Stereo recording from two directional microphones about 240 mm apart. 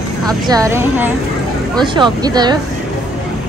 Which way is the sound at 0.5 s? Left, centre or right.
Centre.